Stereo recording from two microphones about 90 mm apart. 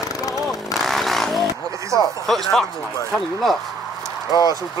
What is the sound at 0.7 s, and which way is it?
Vehicle, centre (ahead or behind).